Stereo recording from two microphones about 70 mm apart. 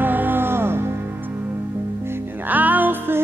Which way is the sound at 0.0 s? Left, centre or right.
Right.